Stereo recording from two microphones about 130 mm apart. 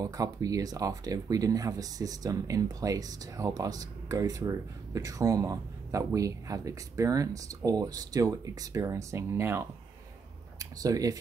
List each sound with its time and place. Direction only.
0.0 s speech: 30° right (ahead or behind)